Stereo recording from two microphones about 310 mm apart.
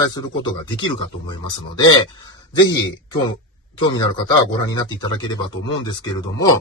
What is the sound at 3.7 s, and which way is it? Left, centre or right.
A man's voice, centre.